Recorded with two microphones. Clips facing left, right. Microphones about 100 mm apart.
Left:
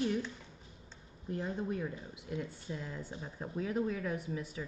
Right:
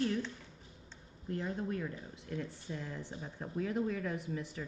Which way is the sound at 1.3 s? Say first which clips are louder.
Left 1 dB; 20° left (ahead or behind).